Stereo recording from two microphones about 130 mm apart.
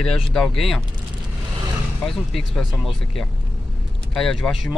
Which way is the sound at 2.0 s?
Centre (ahead or behind).